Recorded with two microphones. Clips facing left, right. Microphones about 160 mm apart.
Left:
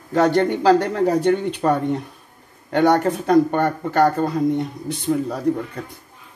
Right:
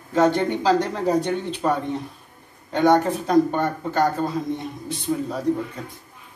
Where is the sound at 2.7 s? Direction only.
65° left (ahead or behind).